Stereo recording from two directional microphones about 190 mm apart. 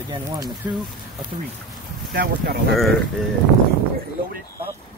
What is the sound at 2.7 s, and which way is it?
Speech, centre (ahead or behind).